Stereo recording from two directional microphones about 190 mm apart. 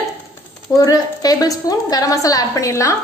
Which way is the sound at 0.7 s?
20° left (ahead or behind).